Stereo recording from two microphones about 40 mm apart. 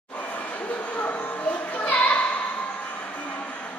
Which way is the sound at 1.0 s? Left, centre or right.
Left.